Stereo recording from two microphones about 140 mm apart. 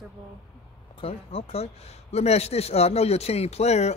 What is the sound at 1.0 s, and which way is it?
Speech, 45° left (ahead or behind).